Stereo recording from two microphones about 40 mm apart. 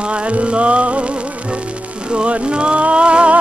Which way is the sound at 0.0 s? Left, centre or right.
Right.